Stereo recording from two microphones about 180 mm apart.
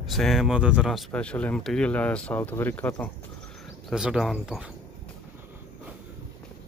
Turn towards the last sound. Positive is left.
turn(degrees=-5)  # may be behind; listen again after turning